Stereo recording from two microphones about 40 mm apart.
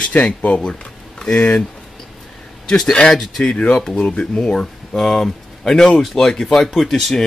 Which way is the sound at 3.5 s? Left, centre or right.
Left.